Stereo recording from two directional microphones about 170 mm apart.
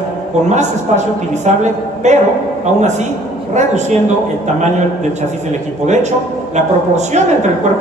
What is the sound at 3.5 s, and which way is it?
Speech, 45° right (ahead or behind).